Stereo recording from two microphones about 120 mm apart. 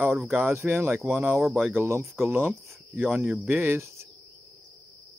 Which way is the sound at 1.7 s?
20° right (ahead or behind).